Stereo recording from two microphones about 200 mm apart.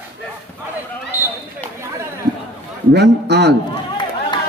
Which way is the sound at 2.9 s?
55° right (ahead or behind).